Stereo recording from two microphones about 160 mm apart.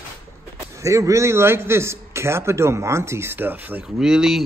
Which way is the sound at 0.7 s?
20° right (ahead or behind).